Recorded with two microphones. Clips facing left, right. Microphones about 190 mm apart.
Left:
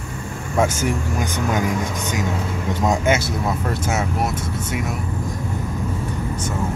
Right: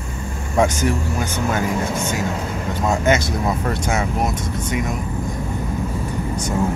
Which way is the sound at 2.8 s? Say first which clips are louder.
Right 1 dB; 10° left (ahead or behind).